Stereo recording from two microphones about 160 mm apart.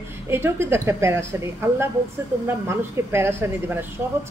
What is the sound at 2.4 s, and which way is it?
A woman's voice, 15° right (ahead or behind).